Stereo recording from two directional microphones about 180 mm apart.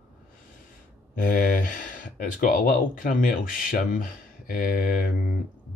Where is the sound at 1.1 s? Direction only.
50° left (ahead or behind).